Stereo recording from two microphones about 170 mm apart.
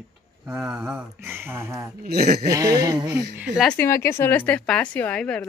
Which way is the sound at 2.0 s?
60° right (ahead or behind).